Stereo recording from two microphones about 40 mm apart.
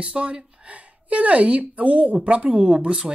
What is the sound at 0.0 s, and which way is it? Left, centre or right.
A woman's voice, right.